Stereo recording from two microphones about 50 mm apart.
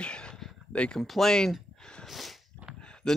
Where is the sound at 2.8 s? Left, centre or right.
Centre.